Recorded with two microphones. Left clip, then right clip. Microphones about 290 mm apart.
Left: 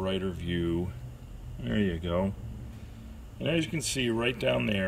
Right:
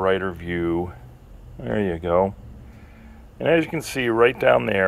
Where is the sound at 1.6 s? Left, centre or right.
Centre.